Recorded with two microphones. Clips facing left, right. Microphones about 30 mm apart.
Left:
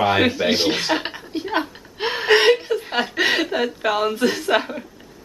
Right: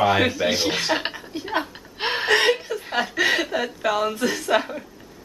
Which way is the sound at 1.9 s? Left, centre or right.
Centre.